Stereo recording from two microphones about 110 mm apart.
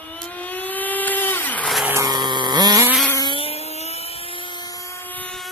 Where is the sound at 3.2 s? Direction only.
55° left (ahead or behind); by 5.0 s 30° left (ahead or behind).